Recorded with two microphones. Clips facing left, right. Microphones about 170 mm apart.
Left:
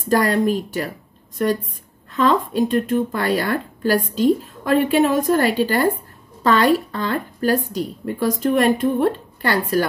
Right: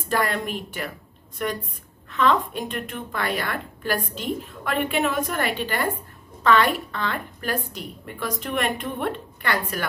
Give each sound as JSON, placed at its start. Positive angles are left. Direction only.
{"t": 0.1, "sound": "a woman's voice", "side_deg": 40}
{"t": 2.1, "sound": "a woman's voice", "side_deg": 35}